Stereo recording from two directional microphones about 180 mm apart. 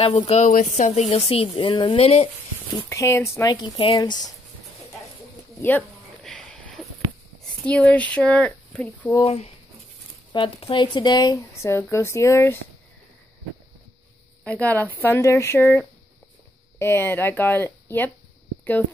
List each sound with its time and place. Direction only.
0.0 s speech: 30° left (ahead or behind)
2.7 s speech: 15° left (ahead or behind)
5.6 s a sound: 10° left (ahead or behind)
7.6 s speech: 5° left (ahead or behind)
9.1 s speech: 30° left (ahead or behind); by 12.5 s 15° left (ahead or behind)
14.4 s speech: 10° left (ahead or behind)
18.6 s a sound: 10° left (ahead or behind)